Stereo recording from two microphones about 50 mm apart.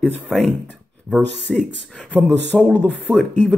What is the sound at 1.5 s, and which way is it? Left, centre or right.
Speech, centre.